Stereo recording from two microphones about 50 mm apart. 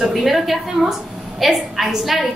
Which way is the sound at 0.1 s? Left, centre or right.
Centre.